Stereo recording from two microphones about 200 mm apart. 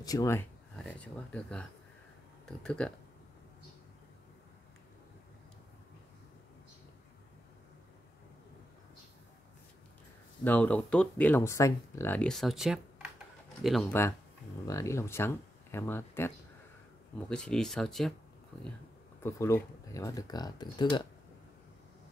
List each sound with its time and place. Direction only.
0.0 s speech: 15° left (ahead or behind)
0.7 s speech: 5° left (ahead or behind)
10.4 s speech: 10° left (ahead or behind)
14.7 s speech: 15° left (ahead or behind)
19.2 s speech: 15° left (ahead or behind)